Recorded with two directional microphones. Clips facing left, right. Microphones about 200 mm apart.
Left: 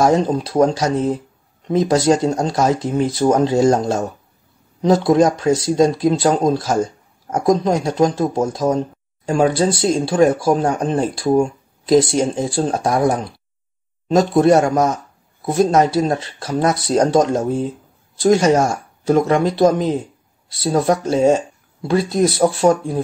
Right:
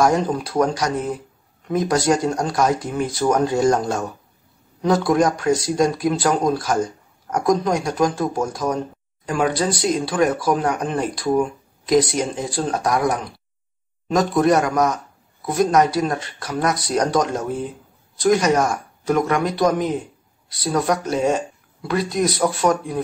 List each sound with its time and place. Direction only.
0.0 s speech: 25° left (ahead or behind)